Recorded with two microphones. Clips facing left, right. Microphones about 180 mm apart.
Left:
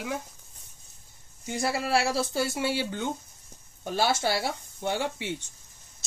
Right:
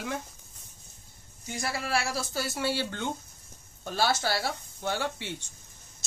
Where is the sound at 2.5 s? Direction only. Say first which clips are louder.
Left 2 dB; 15° left (ahead or behind).